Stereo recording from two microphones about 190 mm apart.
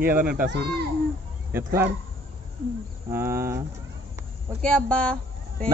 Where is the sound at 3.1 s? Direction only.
15° right (ahead or behind).